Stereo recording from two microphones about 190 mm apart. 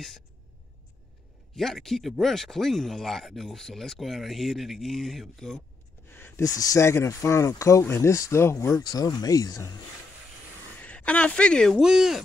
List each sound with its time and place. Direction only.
1.5 s speech: centre (ahead or behind)
6.1 s speech: 10° left (ahead or behind)
10.8 s speech: 5° left (ahead or behind)